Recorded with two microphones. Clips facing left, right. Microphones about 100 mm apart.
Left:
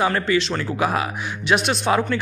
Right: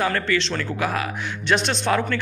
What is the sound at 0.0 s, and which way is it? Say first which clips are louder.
Speech: left 3 dB; 15° left (ahead or behind).